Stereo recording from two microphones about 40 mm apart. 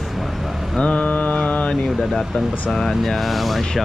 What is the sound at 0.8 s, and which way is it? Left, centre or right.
Mantra, left.